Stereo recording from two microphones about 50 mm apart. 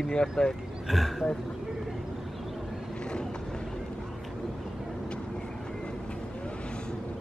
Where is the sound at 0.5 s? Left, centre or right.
Centre.